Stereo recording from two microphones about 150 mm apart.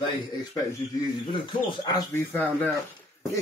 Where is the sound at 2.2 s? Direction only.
15° left (ahead or behind).